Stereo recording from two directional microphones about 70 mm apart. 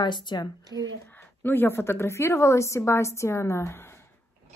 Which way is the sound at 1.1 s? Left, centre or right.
Left.